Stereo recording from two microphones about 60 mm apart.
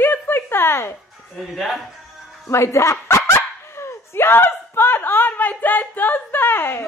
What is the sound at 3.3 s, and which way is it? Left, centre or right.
Dog, left.